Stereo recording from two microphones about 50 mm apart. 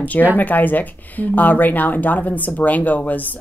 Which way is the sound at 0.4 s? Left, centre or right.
Left.